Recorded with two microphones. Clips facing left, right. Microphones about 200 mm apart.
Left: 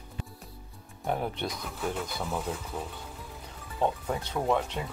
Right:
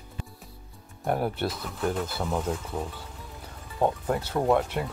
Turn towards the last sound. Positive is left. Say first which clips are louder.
# right 4 dB
turn(degrees=-10)  # may be behind; listen again after turning